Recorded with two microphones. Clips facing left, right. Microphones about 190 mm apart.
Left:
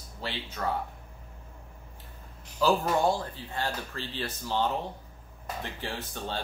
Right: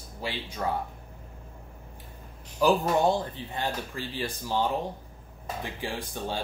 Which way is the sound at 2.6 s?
20° right (ahead or behind).